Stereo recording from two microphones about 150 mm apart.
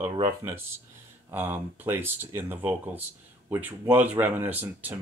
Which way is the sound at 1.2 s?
15° right (ahead or behind).